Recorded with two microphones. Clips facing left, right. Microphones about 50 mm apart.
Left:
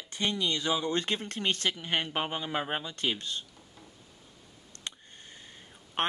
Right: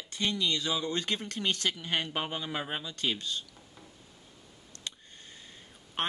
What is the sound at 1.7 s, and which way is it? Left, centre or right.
Speech, centre.